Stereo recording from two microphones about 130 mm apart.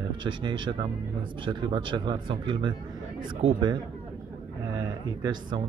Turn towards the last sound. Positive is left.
turn(degrees=-35)  # may be behind; listen again after turning